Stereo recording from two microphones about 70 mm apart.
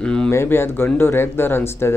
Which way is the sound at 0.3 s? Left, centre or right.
Left.